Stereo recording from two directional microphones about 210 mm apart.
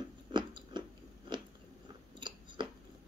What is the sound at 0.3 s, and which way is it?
Chewing, 20° right (ahead or behind).